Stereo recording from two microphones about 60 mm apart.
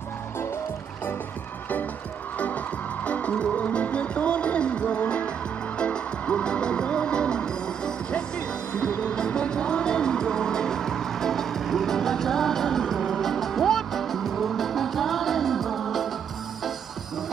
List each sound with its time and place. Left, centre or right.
2.3 s music: left; by 16.1 s centre